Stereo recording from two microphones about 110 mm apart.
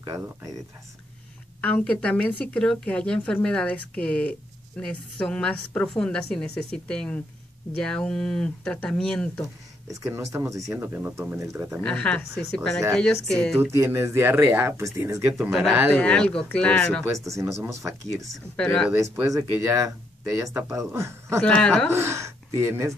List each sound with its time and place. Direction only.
1.6 s a woman's voice: 10° left (ahead or behind)
9.8 s speech: 30° right (ahead or behind)
11.7 s a woman's voice: 10° left (ahead or behind)
13.7 s speech: 25° right (ahead or behind)
16.0 s a woman's voice: 10° left (ahead or behind)
17.0 s speech: 30° right (ahead or behind)
18.6 s a woman's voice: 10° left (ahead or behind)
18.9 s speech: 30° right (ahead or behind)
21.4 s a woman's voice: 10° left (ahead or behind)
21.9 s speech: 25° right (ahead or behind)